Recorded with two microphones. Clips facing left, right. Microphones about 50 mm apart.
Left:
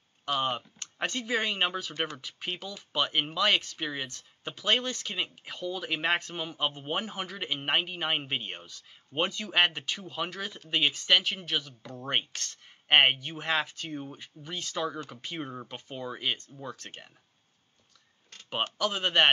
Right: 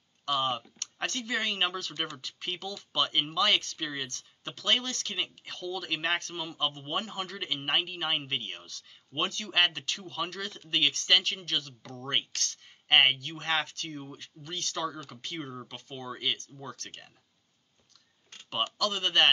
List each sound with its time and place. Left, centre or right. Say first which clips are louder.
0.2 s speech: even; centre
18.5 s speech: left 1 dB; centre